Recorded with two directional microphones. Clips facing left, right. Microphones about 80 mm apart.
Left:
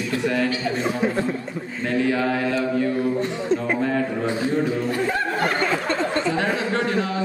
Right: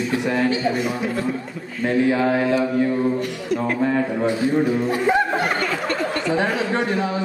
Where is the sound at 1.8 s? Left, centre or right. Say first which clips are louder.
Right 3 dB; right.